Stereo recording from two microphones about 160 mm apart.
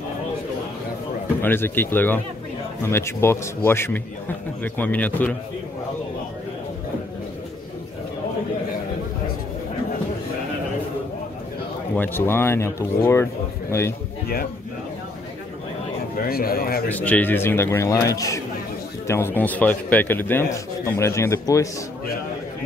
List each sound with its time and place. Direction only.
1.4 s speech: 15° left (ahead or behind)
11.9 s speech: 10° left (ahead or behind)
14.2 s speech: 70° left (ahead or behind)
16.3 s speech: 70° left (ahead or behind)
16.9 s speech: 10° left (ahead or behind)